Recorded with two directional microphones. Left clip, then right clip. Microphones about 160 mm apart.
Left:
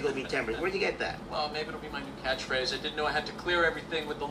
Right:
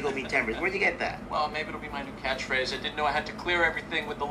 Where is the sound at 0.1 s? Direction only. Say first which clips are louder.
Right 4 dB; 15° right (ahead or behind).